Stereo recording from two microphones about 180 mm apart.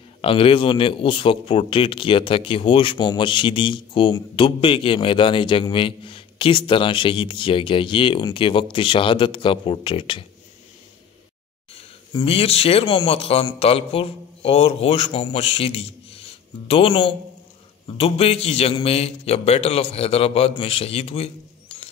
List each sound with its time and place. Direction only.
0.2 s speech: 30° left (ahead or behind)
11.7 s a man's voice: 30° left (ahead or behind)